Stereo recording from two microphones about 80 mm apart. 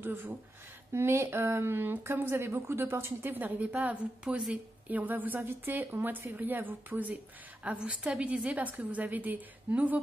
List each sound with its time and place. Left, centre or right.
0.0 s a woman's voice: right